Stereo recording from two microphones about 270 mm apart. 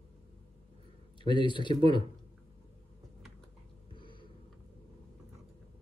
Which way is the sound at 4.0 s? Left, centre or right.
Centre.